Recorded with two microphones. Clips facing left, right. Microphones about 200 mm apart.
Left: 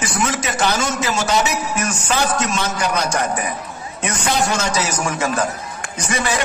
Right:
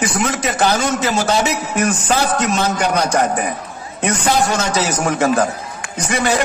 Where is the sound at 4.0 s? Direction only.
60° right (ahead or behind).